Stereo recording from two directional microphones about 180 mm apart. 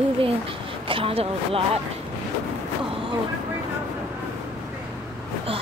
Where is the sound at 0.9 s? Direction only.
30° right (ahead or behind).